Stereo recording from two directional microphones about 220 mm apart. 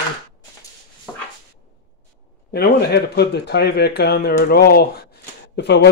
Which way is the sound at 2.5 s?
45° left (ahead or behind).